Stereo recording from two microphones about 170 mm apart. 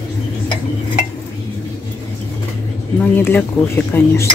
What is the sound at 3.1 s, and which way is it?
Speech, 10° left (ahead or behind).